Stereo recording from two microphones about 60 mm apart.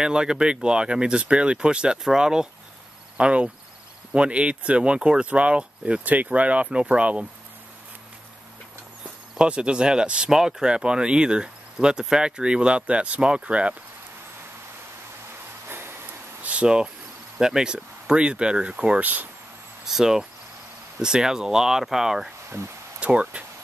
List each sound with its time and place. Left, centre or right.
0.0 s speech: centre
9.4 s speech: centre
16.4 s speech: centre
18.9 s speech: right
19.8 s speech: centre
22.9 s speech: right